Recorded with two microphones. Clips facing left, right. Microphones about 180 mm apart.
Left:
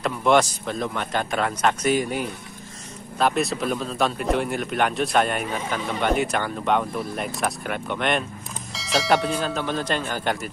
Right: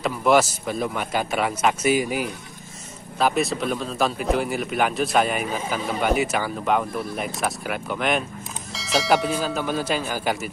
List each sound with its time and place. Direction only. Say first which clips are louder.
0.0 s a man's voice: right 1 dB; 5° right (ahead or behind)